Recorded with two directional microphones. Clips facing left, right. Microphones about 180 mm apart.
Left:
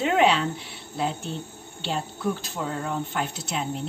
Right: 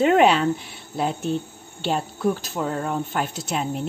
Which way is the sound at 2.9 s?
50° right (ahead or behind).